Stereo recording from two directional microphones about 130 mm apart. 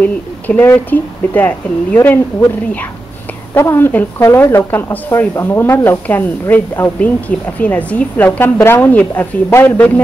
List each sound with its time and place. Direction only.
0.0 s speech: 15° left (ahead or behind)